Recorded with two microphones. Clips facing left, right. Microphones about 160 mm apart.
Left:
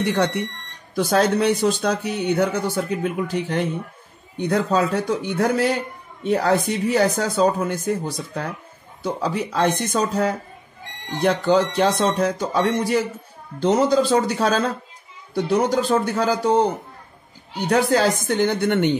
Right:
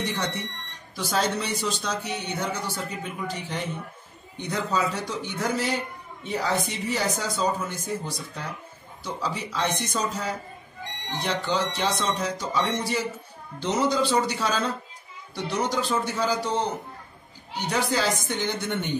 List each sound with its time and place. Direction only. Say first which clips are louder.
0.0 s speech: left 9 dB; 60° left (ahead or behind)